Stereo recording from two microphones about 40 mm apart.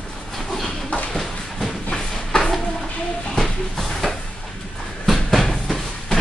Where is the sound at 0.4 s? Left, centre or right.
Centre.